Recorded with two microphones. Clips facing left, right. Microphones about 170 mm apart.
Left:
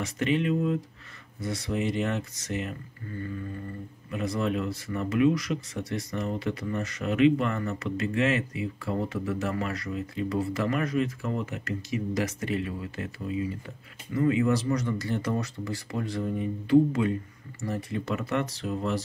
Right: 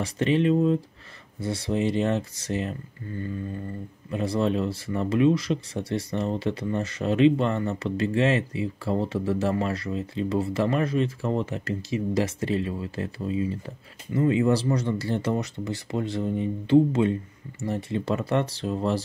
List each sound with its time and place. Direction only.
0.0 s speech: 30° right (ahead or behind)
4.1 s speech: 30° right (ahead or behind)